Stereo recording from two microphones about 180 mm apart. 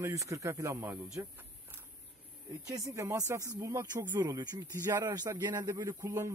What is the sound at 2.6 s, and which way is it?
Speech, 20° right (ahead or behind).